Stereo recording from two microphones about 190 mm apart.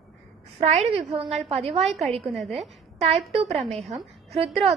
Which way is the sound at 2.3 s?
Centre (ahead or behind).